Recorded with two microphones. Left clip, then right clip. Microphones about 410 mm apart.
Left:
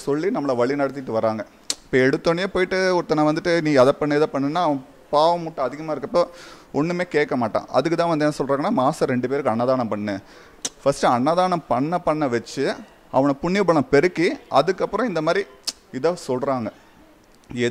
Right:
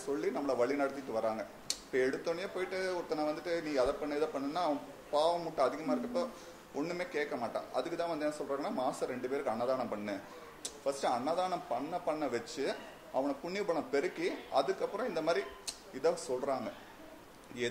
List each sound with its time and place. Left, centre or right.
0.0 s a man's voice: left
10.8 s speech: left